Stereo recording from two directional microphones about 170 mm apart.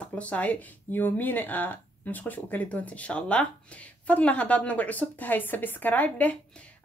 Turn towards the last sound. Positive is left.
turn(degrees=10)  # may be behind; listen again after turning